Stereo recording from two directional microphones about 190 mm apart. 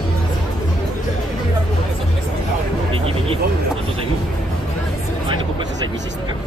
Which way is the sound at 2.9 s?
30° right (ahead or behind).